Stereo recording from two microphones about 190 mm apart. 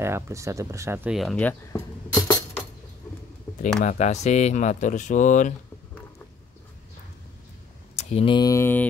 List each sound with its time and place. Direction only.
0.0 s speech: 15° right (ahead or behind); by 2.6 s 15° left (ahead or behind)
3.8 s speech: 40° left (ahead or behind)
7.9 s speech: 35° left (ahead or behind); by 8.8 s 15° left (ahead or behind)